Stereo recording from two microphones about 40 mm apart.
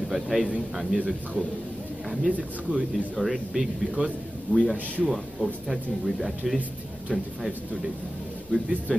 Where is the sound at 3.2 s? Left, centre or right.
Centre.